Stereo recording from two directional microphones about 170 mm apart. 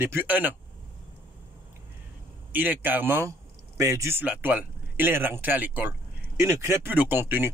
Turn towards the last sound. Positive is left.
turn(degrees=-10)  # may be behind; listen again after turning